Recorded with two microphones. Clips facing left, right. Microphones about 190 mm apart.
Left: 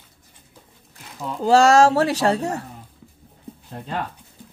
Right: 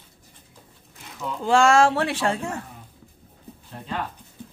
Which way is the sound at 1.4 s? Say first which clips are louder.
Left 4 dB; 40° left (ahead or behind).